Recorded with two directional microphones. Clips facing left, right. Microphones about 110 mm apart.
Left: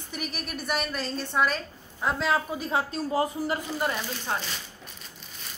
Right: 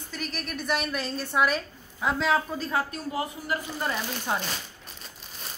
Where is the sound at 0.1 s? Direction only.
10° left (ahead or behind).